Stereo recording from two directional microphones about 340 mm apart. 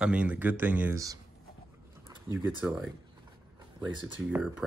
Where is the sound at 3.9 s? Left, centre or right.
Centre.